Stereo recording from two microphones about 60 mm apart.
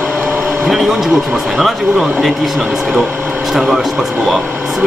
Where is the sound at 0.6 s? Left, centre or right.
Centre.